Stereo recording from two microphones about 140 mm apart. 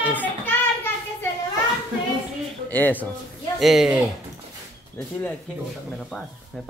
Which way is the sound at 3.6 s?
Centre (ahead or behind).